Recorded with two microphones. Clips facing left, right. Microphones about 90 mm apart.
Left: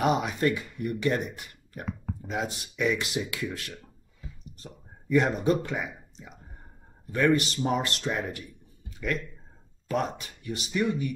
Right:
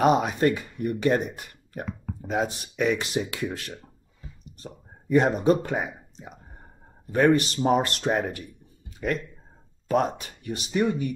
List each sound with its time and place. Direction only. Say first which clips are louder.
0.0 s speech: right 4 dB; 40° right (ahead or behind)
7.1 s speech: right 4 dB; 40° right (ahead or behind)